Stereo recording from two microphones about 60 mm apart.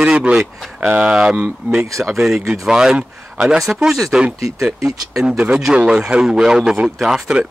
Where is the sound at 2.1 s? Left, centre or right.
Centre.